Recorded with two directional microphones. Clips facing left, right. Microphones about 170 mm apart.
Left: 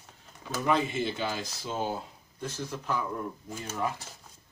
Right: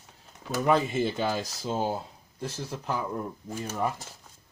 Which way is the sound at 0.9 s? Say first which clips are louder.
Right 4 dB; 40° right (ahead or behind).